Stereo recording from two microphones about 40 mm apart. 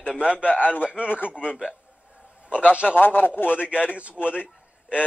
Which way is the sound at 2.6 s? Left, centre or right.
Right.